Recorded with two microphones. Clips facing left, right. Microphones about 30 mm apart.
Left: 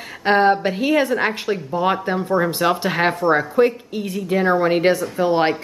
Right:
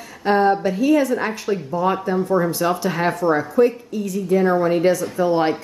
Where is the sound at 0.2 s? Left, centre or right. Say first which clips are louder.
Left 1 dB; left.